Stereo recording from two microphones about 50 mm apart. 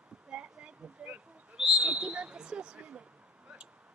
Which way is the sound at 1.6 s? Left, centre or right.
Centre.